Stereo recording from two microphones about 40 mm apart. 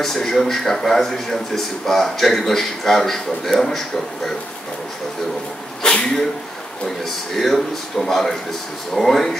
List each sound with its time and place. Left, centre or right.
0.0 s a man's voice: centre
5.8 s speech: centre
7.3 s a man's voice: centre